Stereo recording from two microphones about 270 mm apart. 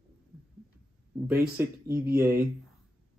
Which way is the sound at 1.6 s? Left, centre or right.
Centre.